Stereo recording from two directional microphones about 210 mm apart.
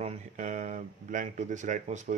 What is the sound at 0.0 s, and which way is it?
Speech, 30° right (ahead or behind).